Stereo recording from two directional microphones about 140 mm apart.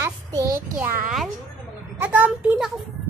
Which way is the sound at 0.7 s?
15° right (ahead or behind).